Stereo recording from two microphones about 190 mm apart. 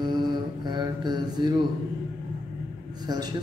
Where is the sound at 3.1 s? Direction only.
20° right (ahead or behind).